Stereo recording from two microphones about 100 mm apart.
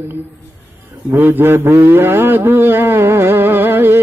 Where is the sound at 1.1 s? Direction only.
20° right (ahead or behind).